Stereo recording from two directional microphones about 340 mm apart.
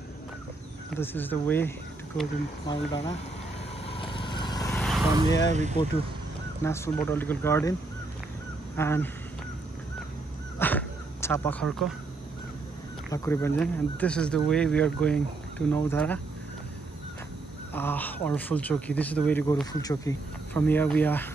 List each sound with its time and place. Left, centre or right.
0.9 s speech: centre
3.8 s vehicle: centre
5.5 s speech: centre
6.6 s speech: centre
8.7 s speech: centre
10.6 s a sound: centre
13.1 s speech: centre
17.7 s speech: centre